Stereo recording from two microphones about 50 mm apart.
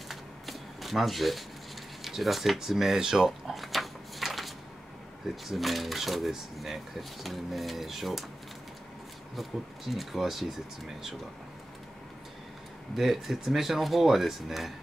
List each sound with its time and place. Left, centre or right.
0.1 s shuffling cards: centre
2.0 s a sound: centre
5.3 s speech: centre
9.3 s speech: centre
12.9 s speech: centre